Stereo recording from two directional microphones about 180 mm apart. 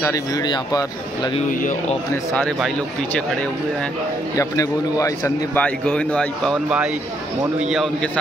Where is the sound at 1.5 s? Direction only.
45° left (ahead or behind).